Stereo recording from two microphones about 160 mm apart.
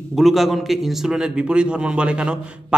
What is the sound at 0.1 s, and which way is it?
A man's voice, centre (ahead or behind).